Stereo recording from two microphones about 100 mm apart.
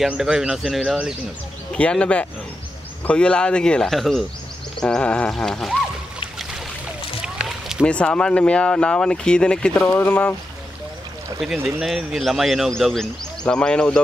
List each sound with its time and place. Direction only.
0.0 s a man's voice: 5° right (ahead or behind)
1.8 s a man's voice: 10° left (ahead or behind)
7.3 s a sound: 5° right (ahead or behind)
7.8 s speech: 10° left (ahead or behind)
11.4 s a man's voice: 5° right (ahead or behind)